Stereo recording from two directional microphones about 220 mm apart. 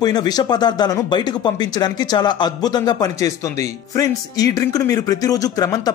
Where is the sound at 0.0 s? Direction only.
20° left (ahead or behind).